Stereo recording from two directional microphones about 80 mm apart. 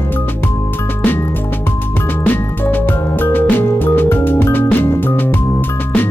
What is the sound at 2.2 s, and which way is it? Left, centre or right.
Music, left.